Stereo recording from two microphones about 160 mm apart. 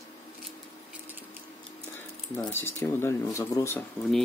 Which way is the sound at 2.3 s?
15° left (ahead or behind).